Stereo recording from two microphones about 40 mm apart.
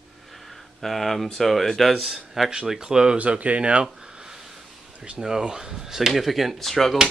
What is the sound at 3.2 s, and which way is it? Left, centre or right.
Speech, right.